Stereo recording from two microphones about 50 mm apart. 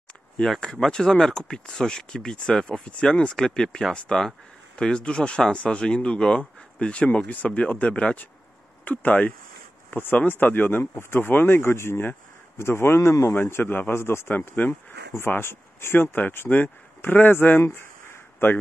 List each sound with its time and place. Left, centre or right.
0.7 s speech: centre; by 9.3 s left
10.4 s speech: left
15.1 s speech: left